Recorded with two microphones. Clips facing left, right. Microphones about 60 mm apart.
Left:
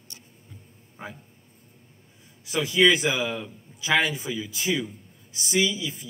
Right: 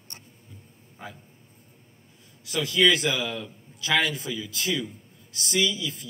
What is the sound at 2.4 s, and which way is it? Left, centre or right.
A man's voice, left.